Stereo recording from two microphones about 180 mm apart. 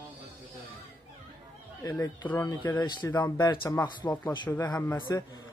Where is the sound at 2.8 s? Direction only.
25° left (ahead or behind).